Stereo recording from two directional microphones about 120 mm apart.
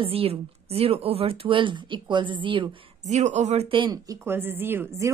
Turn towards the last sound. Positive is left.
turn(degrees=-20)  # may be behind; listen again after turning